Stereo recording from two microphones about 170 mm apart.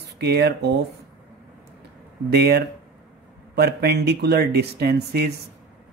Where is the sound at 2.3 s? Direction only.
75° right (ahead or behind).